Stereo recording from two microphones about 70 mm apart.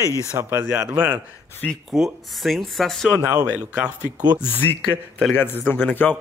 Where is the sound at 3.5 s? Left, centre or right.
Centre.